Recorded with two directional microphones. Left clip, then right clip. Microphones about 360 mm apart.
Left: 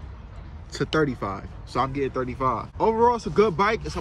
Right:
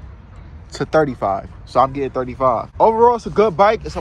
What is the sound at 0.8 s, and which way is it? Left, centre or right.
Speech, centre.